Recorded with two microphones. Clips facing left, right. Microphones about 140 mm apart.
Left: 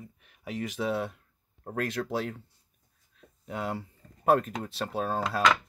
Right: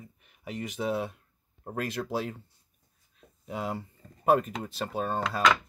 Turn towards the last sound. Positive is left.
turn(degrees=5)  # may be behind; listen again after turning